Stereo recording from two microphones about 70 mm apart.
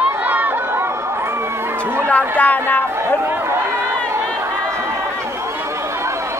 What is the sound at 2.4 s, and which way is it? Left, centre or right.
Speech, left.